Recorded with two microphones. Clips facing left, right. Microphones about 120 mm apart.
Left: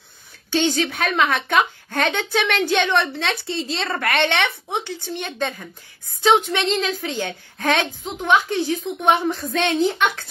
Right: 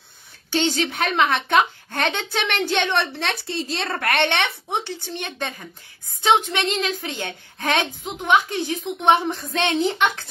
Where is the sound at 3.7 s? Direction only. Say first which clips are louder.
Left 1 dB; 50° right (ahead or behind).